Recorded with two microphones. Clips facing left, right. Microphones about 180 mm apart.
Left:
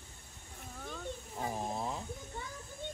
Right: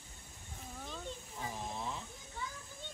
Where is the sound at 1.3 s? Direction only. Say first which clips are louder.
Left 6 dB; 40° left (ahead or behind).